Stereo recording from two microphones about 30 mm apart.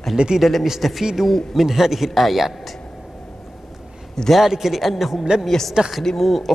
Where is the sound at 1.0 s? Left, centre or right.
Centre.